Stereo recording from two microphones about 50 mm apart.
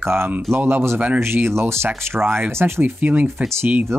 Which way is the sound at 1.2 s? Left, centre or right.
Right.